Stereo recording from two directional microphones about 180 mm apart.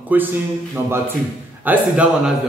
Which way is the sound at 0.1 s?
10° right (ahead or behind).